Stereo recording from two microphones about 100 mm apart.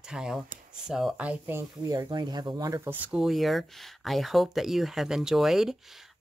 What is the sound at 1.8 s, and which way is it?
Speech, 35° right (ahead or behind).